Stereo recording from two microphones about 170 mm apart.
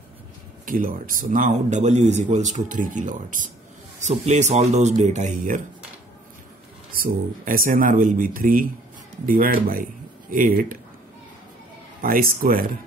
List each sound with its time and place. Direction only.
0.7 s speech: 55° right (ahead or behind)
6.9 s speech: 55° right (ahead or behind)
12.0 s speech: 55° right (ahead or behind)